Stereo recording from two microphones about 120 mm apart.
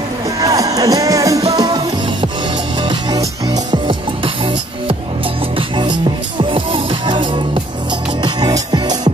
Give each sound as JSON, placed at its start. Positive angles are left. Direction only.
{"t": 0.4, "sound": "music", "side_deg": -30}
{"t": 3.1, "sound": "music", "side_deg": -30}
{"t": 5.8, "sound": "music", "side_deg": -40}